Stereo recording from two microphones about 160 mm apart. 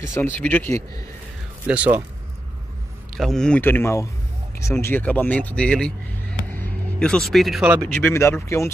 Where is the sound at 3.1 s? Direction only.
Centre (ahead or behind).